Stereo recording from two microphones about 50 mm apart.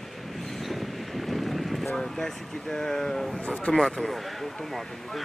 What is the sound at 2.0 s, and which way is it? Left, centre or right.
Speech, centre.